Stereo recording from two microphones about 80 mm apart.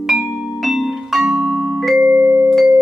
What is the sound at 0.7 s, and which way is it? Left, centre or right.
Music, centre.